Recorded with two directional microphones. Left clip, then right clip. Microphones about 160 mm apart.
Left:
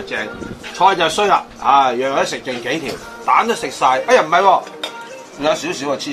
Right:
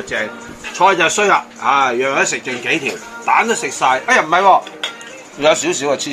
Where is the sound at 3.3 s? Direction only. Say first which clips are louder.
Right 1 dB; 75° right (ahead or behind).